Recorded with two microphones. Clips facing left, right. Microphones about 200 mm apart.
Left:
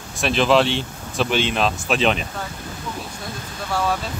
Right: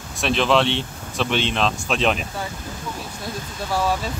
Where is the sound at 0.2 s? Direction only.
Centre (ahead or behind).